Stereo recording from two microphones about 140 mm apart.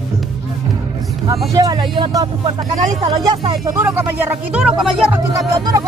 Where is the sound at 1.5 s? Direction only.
25° right (ahead or behind).